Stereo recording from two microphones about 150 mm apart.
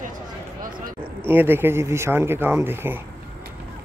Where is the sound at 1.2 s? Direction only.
15° right (ahead or behind).